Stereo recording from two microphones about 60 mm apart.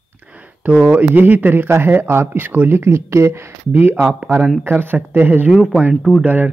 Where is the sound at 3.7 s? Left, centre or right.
Right.